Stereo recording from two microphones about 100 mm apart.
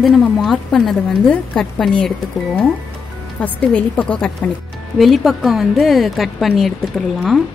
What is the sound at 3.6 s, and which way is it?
Speech, 10° left (ahead or behind).